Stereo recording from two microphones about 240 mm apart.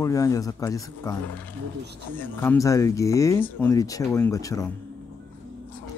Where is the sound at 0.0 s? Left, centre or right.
Centre.